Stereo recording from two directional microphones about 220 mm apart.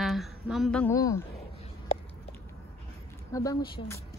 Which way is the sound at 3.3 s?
15° left (ahead or behind).